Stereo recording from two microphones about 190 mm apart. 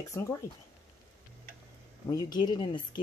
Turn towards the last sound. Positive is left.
turn(degrees=25)  # may be behind; listen again after turning